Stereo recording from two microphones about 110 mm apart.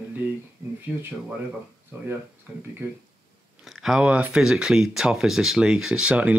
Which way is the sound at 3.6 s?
5° right (ahead or behind).